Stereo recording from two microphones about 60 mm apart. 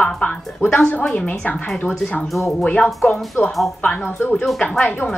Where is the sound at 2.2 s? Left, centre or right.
Centre.